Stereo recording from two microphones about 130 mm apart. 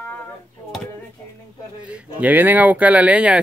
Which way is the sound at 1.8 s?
10° right (ahead or behind).